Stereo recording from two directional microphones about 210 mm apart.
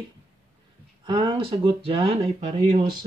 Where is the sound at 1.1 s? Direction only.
20° right (ahead or behind).